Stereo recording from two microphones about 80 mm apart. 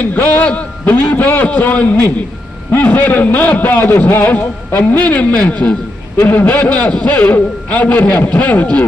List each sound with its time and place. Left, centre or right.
0.0 s a man's voice: left